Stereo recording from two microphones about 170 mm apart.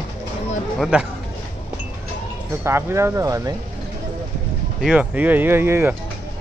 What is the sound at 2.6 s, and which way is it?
Speech, 15° right (ahead or behind).